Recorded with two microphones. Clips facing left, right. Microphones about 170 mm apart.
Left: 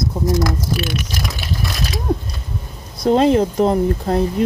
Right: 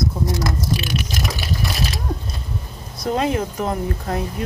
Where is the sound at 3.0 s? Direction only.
30° left (ahead or behind).